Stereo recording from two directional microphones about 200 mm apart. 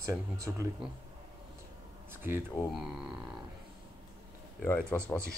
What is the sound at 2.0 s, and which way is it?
Speech, 10° right (ahead or behind).